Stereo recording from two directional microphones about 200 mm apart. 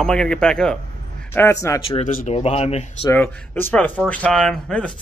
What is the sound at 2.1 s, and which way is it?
Speech, 35° left (ahead or behind).